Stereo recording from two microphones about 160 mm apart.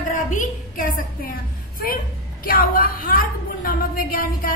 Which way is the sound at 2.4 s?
65° left (ahead or behind).